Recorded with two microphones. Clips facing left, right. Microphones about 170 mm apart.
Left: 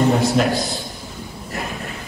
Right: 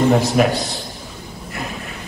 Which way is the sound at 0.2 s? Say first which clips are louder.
Right 1 dB; centre (ahead or behind).